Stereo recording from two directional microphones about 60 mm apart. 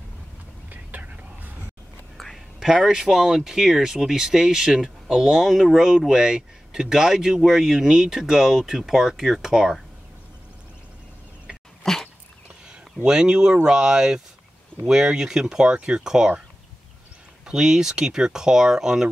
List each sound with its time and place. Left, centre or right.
0.7 s whispering: right
2.1 s a sound: centre
2.6 s speech: centre
11.8 s dog: centre
13.0 s speech: centre
17.5 s speech: centre